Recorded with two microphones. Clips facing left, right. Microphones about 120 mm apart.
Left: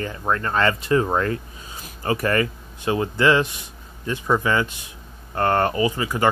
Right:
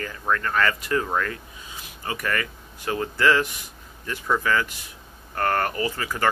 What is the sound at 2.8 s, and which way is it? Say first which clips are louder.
Speech: left 3 dB; 20° left (ahead or behind).